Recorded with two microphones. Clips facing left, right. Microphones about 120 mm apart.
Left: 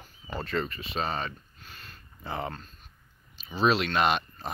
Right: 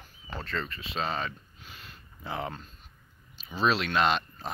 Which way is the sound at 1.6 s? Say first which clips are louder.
Right 1 dB; 15° right (ahead or behind).